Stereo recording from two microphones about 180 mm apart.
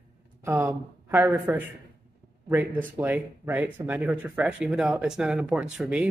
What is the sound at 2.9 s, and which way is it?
Speech, 10° right (ahead or behind).